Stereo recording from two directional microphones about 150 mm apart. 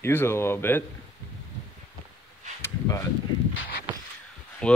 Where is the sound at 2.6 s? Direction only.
20° left (ahead or behind).